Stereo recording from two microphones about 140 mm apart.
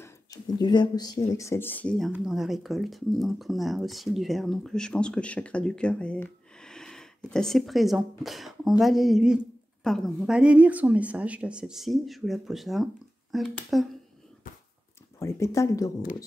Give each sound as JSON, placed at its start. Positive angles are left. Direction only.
{"t": 0.6, "sound": "speech", "side_deg": 30}
{"t": 15.1, "sound": "speech", "side_deg": 20}